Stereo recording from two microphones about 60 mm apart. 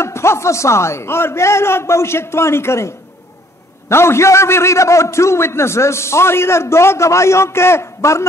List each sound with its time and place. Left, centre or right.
0.0 s a man's voice: left
3.9 s a man's voice: left